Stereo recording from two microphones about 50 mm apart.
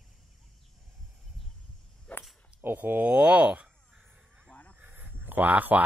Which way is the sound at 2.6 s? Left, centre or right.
Right.